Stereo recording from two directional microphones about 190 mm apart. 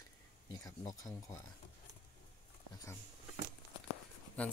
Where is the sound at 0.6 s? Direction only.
20° left (ahead or behind).